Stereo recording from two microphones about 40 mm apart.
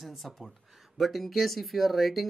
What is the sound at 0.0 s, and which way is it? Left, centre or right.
Speech, centre.